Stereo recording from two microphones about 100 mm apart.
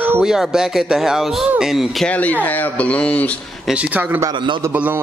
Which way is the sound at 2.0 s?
15° left (ahead or behind).